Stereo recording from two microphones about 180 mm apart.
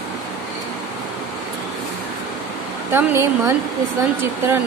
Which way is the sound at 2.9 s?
10° right (ahead or behind).